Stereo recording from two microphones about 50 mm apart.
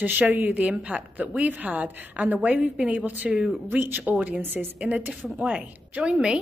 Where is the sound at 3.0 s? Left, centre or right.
Right.